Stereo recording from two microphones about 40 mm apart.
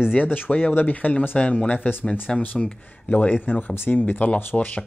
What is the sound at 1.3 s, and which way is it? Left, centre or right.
Speech, left.